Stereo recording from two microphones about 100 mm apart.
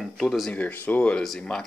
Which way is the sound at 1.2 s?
5° left (ahead or behind).